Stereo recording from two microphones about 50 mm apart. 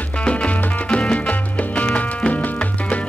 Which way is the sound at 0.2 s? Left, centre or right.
Left.